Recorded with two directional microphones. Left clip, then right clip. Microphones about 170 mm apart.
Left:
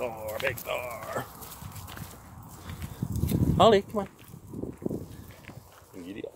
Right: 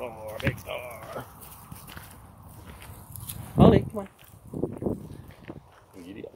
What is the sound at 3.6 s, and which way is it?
Speech, 35° left (ahead or behind).